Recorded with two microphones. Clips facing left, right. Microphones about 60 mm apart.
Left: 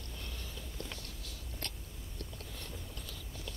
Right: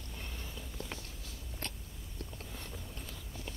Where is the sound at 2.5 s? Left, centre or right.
Right.